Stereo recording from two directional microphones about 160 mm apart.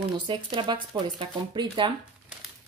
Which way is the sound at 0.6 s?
30° right (ahead or behind).